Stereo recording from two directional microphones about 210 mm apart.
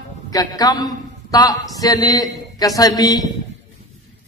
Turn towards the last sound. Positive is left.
turn(degrees=15)  # may be behind; listen again after turning